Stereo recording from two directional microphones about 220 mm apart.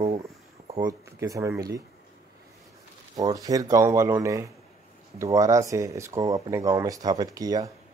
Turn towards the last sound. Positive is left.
turn(degrees=-15)  # may be behind; listen again after turning